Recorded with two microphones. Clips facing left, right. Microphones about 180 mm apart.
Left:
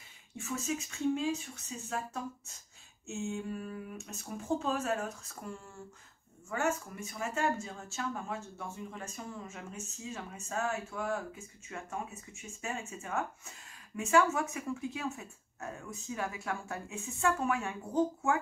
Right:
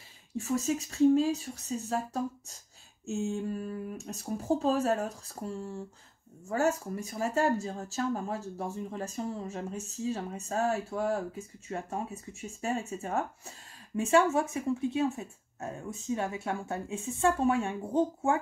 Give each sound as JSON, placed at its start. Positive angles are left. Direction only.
{"t": 0.4, "sound": "speech", "side_deg": -35}